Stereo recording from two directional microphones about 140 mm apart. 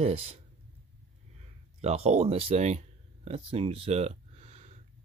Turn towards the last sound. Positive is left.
turn(degrees=-50)  # may be behind; listen again after turning